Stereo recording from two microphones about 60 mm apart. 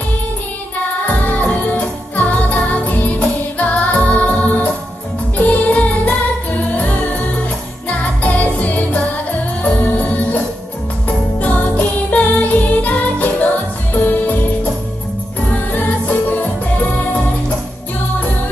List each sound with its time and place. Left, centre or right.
1.0 s music: left